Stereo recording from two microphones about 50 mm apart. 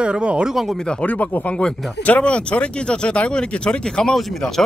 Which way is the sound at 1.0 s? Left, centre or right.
Left.